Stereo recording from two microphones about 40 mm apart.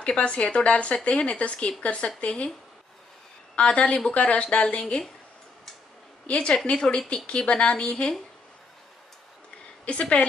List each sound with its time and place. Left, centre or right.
0.0 s speech: left
3.5 s speech: left
6.2 s a woman's voice: left
6.5 s speech: left
9.8 s speech: left